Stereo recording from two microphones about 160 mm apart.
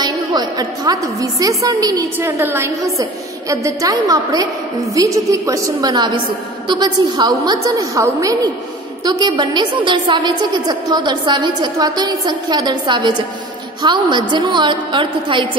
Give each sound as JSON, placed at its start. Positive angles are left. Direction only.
{"t": 0.0, "sound": "a woman's voice", "side_deg": -25}